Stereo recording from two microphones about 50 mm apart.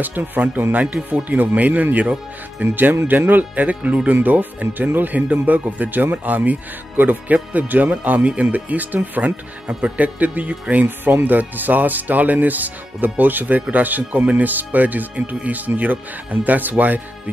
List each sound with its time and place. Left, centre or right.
0.0 s speech: right
9.7 s speech: right